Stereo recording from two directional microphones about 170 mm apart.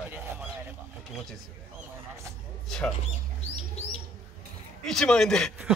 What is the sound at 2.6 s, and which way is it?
Speech, 5° left (ahead or behind).